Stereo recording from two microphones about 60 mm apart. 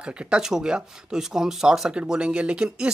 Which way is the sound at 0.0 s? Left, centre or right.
Centre.